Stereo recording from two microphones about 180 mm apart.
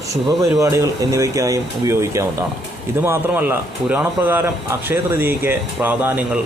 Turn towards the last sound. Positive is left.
turn(degrees=-10)  # may be behind; listen again after turning